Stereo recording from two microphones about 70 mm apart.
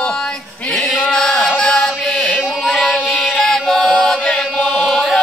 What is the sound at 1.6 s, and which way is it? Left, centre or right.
Chant, centre.